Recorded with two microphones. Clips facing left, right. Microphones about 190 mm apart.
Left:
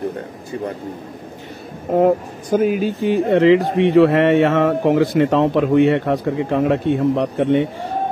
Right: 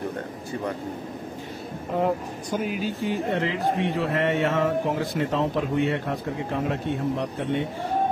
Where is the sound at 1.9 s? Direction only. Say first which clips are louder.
Left 10 dB; 45° left (ahead or behind).